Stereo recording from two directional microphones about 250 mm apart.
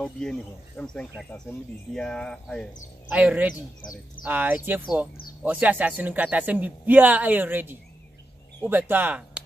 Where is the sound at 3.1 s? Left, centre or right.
Centre.